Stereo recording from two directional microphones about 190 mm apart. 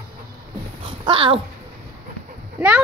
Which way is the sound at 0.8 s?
25° right (ahead or behind).